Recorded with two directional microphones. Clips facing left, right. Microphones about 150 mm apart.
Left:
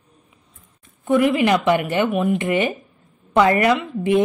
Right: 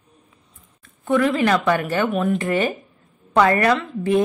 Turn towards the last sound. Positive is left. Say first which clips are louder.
# left 1 dB
turn(degrees=20)  # may be behind; listen again after turning